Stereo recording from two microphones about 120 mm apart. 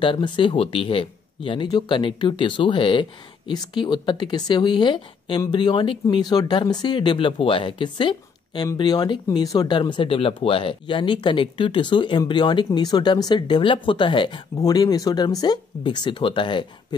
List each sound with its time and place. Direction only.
0.0 s speech: 45° left (ahead or behind)
14.6 s speech: 30° left (ahead or behind)